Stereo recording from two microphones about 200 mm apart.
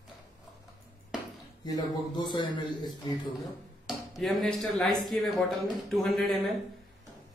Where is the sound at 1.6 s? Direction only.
20° left (ahead or behind).